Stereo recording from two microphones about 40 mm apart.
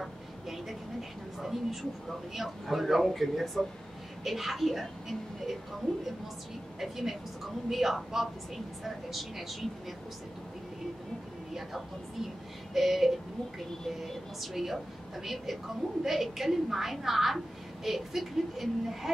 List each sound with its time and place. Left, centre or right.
0.0 s a sound: centre
1.4 s a woman's voice: centre
6.8 s a woman's voice: centre
11.5 s a woman's voice: centre